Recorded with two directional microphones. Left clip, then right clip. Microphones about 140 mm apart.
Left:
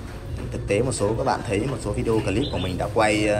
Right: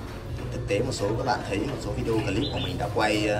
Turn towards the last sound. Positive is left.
turn(degrees=-10)  # may be behind; listen again after turning